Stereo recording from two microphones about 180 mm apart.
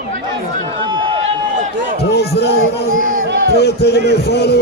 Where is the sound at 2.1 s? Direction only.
70° left (ahead or behind).